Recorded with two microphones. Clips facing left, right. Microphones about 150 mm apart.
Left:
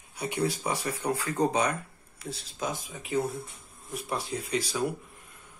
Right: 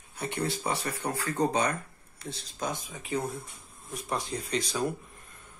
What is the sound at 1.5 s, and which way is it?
Speech, 30° right (ahead or behind).